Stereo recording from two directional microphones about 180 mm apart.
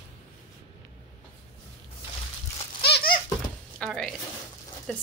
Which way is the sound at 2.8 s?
60° left (ahead or behind).